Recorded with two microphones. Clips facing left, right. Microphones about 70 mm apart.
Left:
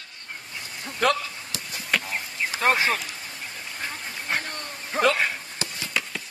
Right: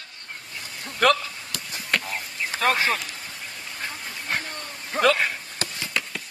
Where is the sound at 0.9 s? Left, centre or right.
Right.